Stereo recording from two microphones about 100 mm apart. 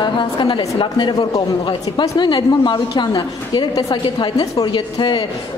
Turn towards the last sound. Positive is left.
turn(degrees=50)  # may be behind; listen again after turning